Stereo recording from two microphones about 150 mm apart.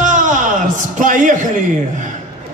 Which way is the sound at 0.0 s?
55° right (ahead or behind).